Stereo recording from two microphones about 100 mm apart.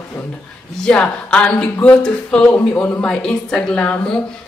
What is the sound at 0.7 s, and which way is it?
Speech, 10° left (ahead or behind).